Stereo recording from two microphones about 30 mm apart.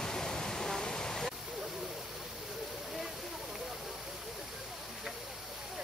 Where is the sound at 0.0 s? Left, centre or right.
Centre.